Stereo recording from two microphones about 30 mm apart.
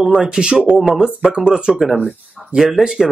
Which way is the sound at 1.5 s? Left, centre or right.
Centre.